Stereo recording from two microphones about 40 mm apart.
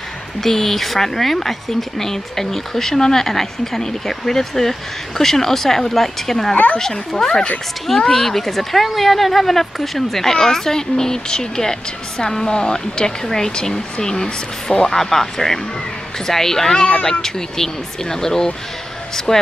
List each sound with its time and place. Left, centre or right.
0.4 s speech: centre
6.5 s speech: left
6.8 s speech: centre
8.1 s speech: centre